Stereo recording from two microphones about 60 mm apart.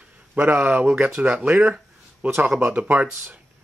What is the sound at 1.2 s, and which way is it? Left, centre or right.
Speech, right.